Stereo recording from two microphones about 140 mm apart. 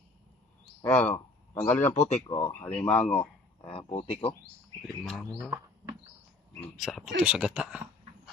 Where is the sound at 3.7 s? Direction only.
40° left (ahead or behind).